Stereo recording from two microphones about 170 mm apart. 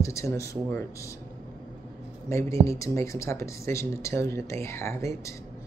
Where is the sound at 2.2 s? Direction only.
15° left (ahead or behind).